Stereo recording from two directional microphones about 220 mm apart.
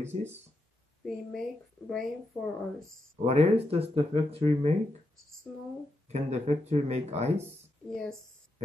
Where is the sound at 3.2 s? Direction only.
30° right (ahead or behind).